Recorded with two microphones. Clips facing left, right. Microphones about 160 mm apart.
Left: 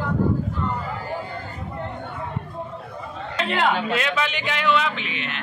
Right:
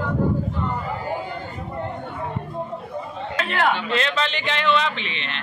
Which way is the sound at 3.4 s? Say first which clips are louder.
Left 1 dB; 15° left (ahead or behind).